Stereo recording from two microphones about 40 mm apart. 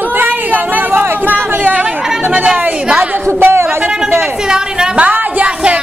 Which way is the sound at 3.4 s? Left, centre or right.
Right.